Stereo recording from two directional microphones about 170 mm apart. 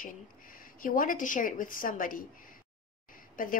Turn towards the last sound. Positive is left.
turn(degrees=55)  # may be behind; listen again after turning